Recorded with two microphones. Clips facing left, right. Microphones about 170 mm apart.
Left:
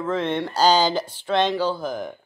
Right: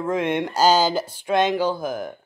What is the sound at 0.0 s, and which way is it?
Speech, 15° right (ahead or behind).